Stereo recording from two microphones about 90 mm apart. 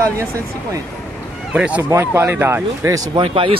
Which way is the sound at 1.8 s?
30° right (ahead or behind).